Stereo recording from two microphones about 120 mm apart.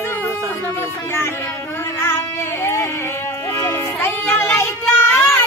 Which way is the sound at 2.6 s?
20° left (ahead or behind).